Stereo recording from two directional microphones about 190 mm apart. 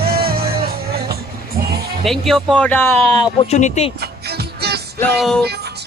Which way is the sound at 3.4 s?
35° left (ahead or behind).